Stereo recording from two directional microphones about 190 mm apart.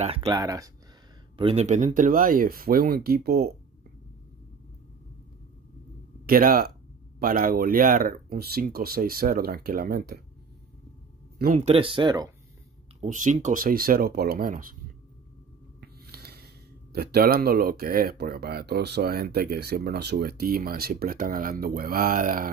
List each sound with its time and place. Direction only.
0.0 s speech: 30° right (ahead or behind)
0.4 s speech: 20° right (ahead or behind)
1.3 s speech: 30° right (ahead or behind); by 3.5 s 55° right (ahead or behind)
6.2 s speech: 50° right (ahead or behind)
11.3 s speech: 50° right (ahead or behind)
11.6 s speech: 30° right (ahead or behind)
13.0 s speech: 40° right (ahead or behind)
16.1 s a sound: 55° right (ahead or behind)
16.9 s speech: 55° right (ahead or behind)